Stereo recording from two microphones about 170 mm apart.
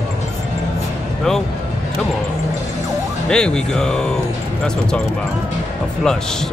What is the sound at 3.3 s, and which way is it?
Speech, 5° left (ahead or behind).